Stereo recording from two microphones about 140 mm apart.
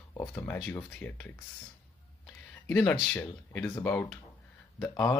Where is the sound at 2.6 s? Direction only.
10° left (ahead or behind).